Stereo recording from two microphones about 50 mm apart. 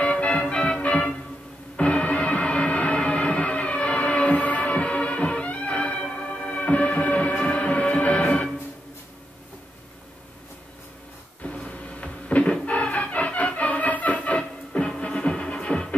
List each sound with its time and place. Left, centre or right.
0.0 s music: left
11.4 s music: left